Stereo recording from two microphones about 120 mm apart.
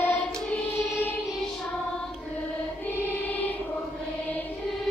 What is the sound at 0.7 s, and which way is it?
Choir, 15° left (ahead or behind).